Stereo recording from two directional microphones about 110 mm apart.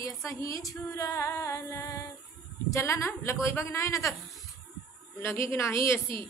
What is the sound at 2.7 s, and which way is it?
A woman's voice, 25° left (ahead or behind).